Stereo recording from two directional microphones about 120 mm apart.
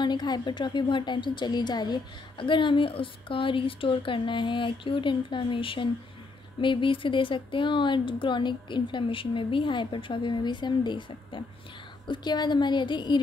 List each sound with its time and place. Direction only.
0.0 s a woman's voice: 40° left (ahead or behind)